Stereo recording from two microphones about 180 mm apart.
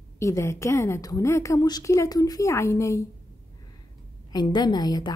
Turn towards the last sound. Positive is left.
turn(degrees=25)  # may be behind; listen again after turning